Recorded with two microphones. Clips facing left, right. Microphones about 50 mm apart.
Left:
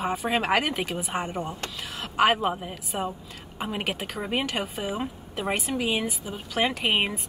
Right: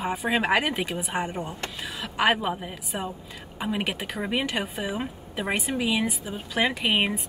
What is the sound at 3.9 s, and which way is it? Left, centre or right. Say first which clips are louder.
A woman's voice: right 1 dB; right.